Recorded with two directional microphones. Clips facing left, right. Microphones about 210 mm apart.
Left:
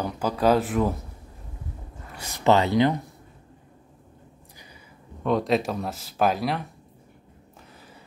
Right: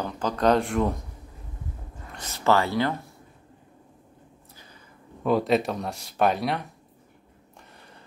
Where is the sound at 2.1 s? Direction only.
10° left (ahead or behind).